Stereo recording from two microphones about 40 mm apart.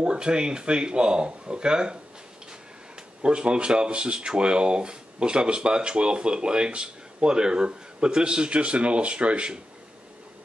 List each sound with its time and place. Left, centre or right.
0.0 s speech: right
3.2 s speech: right